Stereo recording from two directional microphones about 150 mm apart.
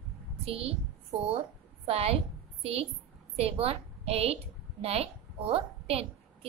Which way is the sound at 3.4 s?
40° right (ahead or behind).